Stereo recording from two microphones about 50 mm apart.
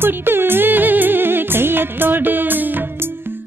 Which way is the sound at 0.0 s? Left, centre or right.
Right.